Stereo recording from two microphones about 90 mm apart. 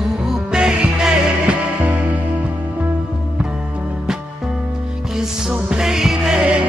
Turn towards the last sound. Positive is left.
turn(degrees=-10)  # may be behind; listen again after turning